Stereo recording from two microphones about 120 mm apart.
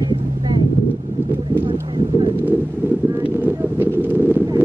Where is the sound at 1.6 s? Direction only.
45° right (ahead or behind).